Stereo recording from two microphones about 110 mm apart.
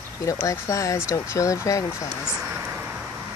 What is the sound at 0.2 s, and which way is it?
Speech, 30° left (ahead or behind).